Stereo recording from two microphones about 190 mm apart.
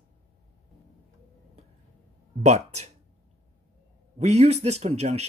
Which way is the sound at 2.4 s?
35° right (ahead or behind).